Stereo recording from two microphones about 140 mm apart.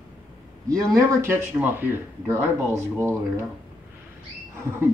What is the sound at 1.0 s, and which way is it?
Speech, 20° right (ahead or behind).